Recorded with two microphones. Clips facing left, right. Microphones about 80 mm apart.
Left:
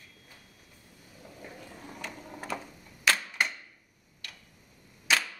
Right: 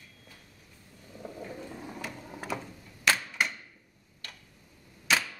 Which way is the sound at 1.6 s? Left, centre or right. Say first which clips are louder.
Right 5 dB; right.